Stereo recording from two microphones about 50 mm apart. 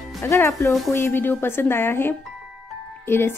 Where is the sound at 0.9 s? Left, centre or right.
Left.